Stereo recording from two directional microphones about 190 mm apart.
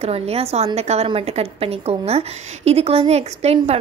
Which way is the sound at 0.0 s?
30° right (ahead or behind).